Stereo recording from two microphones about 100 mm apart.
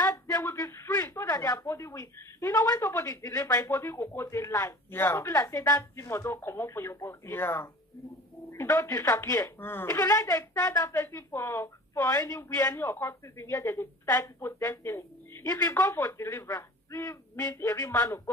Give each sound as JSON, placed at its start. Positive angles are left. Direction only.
{"t": 0.0, "sound": "speech", "side_deg": 25}